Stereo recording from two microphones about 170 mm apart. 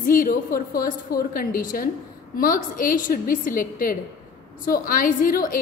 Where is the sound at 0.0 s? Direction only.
55° left (ahead or behind).